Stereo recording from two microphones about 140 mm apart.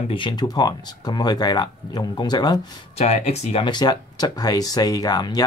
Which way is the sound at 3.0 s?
50° left (ahead or behind).